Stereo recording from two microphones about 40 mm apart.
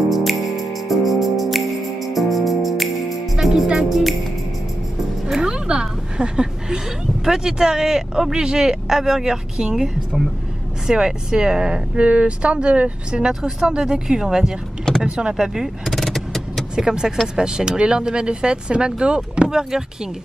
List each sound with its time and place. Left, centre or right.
0.1 s music: centre
5.4 s a sound: right
7.2 s speech: centre
10.9 s speech: centre
12.0 s speech: right
13.3 s speech: centre
15.0 s speech: right
15.3 s speech: centre
15.8 s vehicle: centre
16.7 s speech: centre